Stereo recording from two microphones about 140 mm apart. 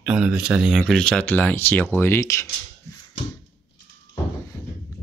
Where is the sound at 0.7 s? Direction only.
5° left (ahead or behind); by 2.4 s 20° left (ahead or behind).